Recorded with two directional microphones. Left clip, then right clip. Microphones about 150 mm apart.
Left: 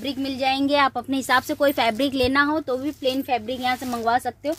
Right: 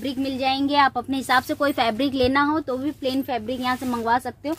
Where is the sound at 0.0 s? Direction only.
90° left.